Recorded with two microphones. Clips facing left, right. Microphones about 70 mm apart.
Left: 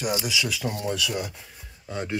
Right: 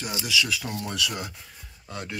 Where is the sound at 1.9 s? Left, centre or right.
Left.